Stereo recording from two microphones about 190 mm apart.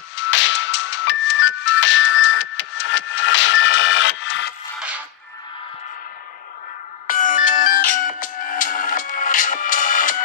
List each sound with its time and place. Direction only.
0.1 s music: 80° left
4.7 s a sound: 5° right (ahead or behind)
7.1 s music: 45° left (ahead or behind)